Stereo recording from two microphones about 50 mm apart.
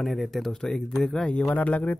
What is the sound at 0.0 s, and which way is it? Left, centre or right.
Speech, centre.